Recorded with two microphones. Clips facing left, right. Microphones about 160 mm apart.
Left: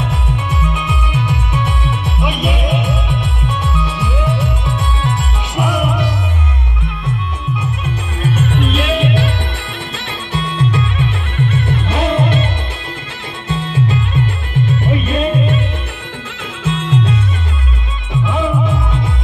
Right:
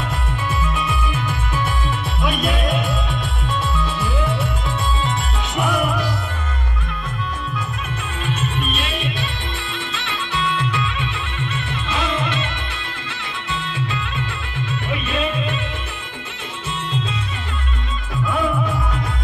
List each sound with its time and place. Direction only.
0.5 s music: 15° left (ahead or behind)
8.5 s music: 85° left
9.9 s music: 40° left (ahead or behind)
13.5 s music: 40° left (ahead or behind)
16.7 s music: 90° left
18.2 s music: 20° left (ahead or behind)